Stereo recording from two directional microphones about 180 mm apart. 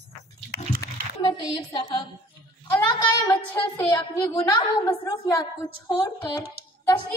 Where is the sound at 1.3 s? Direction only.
25° left (ahead or behind).